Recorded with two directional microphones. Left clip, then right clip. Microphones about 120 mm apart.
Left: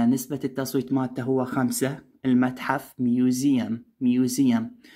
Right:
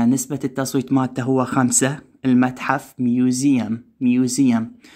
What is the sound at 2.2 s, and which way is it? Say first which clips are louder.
Speech: right 5 dB; 30° right (ahead or behind).